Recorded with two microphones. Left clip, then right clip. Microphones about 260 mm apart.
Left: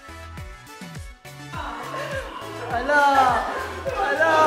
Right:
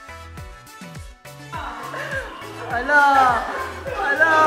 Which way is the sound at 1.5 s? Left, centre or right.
Centre.